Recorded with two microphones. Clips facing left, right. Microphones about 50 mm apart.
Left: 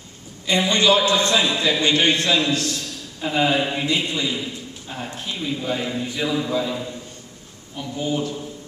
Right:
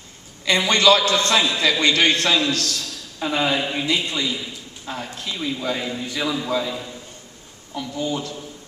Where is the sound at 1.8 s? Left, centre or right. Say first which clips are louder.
Right 1 dB; right.